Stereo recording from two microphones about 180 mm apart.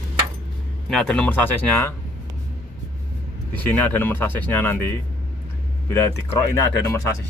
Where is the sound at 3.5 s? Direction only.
10° left (ahead or behind).